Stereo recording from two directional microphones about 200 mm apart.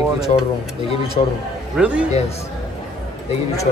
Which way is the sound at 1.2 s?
35° left (ahead or behind).